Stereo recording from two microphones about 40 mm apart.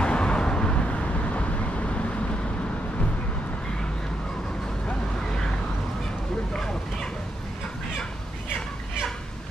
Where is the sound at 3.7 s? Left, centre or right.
Left.